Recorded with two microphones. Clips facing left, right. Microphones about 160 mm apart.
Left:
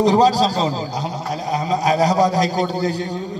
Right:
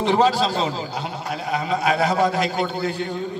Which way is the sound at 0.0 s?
40° left (ahead or behind).